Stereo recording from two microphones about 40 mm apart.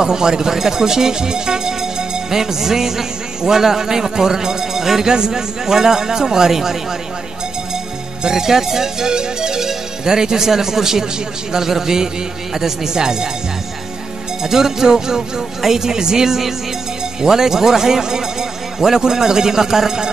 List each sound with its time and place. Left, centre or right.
0.0 s speech: centre
8.2 s speech: centre
14.4 s speech: centre